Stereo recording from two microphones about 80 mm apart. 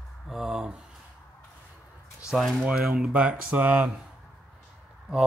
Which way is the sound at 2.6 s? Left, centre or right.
Centre.